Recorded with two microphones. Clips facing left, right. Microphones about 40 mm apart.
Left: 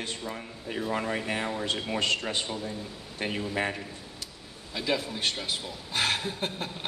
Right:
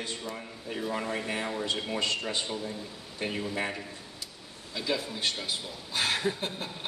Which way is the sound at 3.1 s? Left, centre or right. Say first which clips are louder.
Left 1 dB; left.